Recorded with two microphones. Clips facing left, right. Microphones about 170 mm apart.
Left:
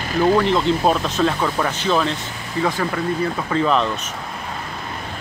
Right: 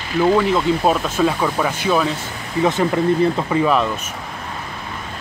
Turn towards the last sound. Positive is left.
turn(degrees=-10)  # may be behind; listen again after turning